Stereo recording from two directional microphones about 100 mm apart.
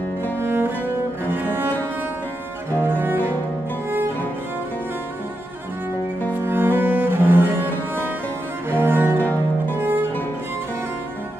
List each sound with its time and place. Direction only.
0.4 s cello: 20° right (ahead or behind)
2.8 s cello: 20° right (ahead or behind)
6.3 s cello: 20° right (ahead or behind)
9.2 s music: 20° left (ahead or behind)